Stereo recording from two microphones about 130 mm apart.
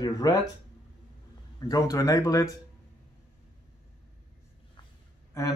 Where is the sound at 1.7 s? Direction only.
25° left (ahead or behind).